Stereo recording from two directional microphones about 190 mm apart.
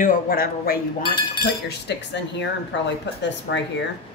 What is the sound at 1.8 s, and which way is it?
Speech, 65° left (ahead or behind).